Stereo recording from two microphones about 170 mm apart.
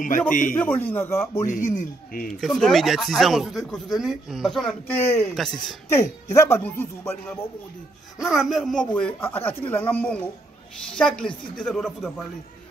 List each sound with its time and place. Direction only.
0.3 s speech: 50° left (ahead or behind)
0.6 s speech: 10° left (ahead or behind)
1.5 s speech: 45° left (ahead or behind)
2.4 s speech: centre (ahead or behind)
5.2 s speech: centre (ahead or behind)
6.3 s speech: 15° left (ahead or behind)
8.2 s speech: centre (ahead or behind)